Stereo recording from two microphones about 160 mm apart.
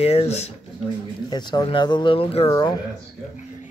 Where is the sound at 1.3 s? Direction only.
25° left (ahead or behind).